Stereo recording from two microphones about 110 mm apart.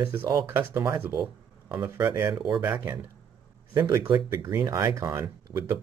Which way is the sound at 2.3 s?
45° right (ahead or behind).